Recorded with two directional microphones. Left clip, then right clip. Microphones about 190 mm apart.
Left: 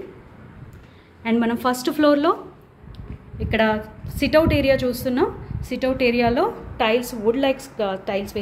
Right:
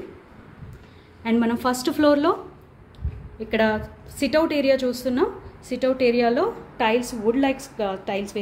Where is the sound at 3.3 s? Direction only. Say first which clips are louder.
Left 2 dB; centre (ahead or behind).